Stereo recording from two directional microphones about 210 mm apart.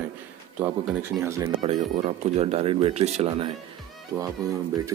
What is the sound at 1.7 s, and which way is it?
Speech, 35° right (ahead or behind).